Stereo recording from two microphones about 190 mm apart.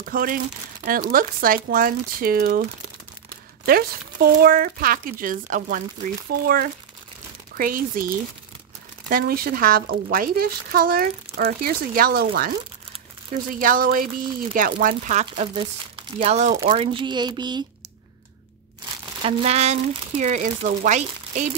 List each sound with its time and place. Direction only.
0.0 s speech: 45° right (ahead or behind)
3.6 s speech: 50° right (ahead or behind)
15.6 s speech: 25° right (ahead or behind)
19.2 s speech: 35° right (ahead or behind)